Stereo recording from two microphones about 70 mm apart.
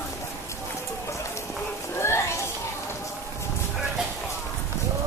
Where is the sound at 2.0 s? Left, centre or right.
Left.